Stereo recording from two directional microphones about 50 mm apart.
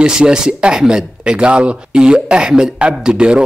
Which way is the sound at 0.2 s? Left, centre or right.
Centre.